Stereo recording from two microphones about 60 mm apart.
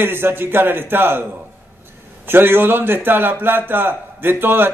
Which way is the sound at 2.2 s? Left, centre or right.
Right.